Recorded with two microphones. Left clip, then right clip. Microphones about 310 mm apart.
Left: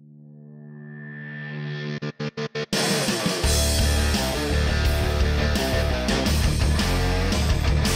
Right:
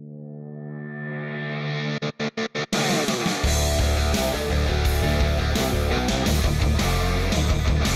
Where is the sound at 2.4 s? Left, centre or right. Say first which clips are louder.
Left 1 dB; centre.